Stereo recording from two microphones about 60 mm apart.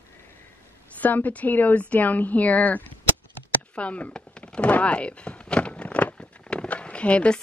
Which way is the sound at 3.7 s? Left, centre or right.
Left.